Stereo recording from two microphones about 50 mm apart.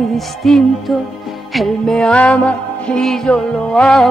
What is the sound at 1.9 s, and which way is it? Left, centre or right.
Music, centre.